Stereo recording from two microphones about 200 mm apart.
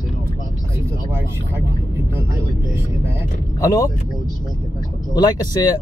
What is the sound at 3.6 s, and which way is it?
Cough, 15° left (ahead or behind).